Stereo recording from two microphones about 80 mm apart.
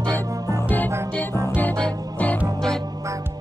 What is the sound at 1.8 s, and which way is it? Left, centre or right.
Music, right.